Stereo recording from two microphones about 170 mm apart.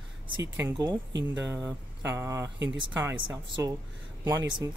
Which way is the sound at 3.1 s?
25° right (ahead or behind).